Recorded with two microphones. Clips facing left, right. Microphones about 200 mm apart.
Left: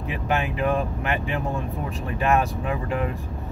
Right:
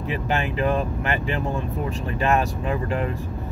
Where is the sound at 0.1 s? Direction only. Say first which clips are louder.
Even; centre (ahead or behind).